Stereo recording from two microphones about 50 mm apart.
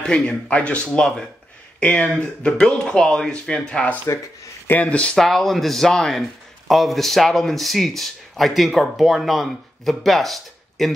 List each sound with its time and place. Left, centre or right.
0.0 s speech: left
0.9 s speech: centre
1.8 s speech: left
2.1 s speech: centre
5.1 s speech: centre